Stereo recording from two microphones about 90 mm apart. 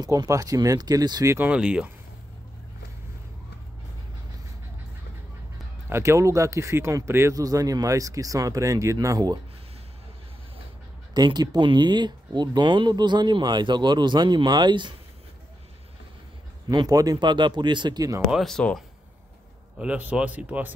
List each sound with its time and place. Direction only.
0.0 s speech: 40° right (ahead or behind)
1.4 s speech: 10° right (ahead or behind)
5.9 s speech: 30° right (ahead or behind)
11.1 s speech: 50° right (ahead or behind)
16.6 s speech: 45° right (ahead or behind)
18.3 s speech: 5° left (ahead or behind)
19.8 s speech: 15° right (ahead or behind)